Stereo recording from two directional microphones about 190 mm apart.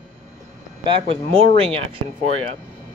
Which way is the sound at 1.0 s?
30° right (ahead or behind).